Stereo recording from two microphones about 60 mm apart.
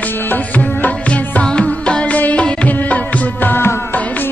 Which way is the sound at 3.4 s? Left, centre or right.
Left.